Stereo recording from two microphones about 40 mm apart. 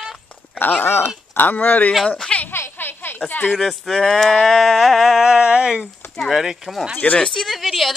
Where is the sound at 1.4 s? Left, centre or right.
Left.